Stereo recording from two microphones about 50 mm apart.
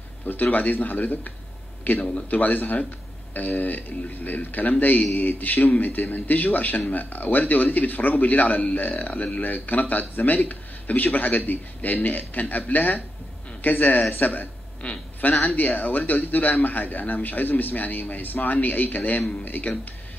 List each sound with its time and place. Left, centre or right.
0.3 s speech: left
14.8 s speech: left
15.4 s speech: left